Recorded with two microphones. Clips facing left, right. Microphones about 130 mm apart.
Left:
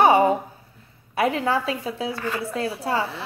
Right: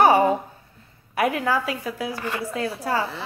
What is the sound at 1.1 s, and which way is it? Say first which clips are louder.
A woman's voice: even; 25° left (ahead or behind).